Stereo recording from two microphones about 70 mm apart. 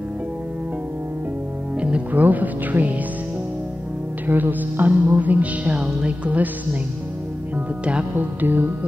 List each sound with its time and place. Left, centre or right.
1.8 s speech: centre
4.3 s music: right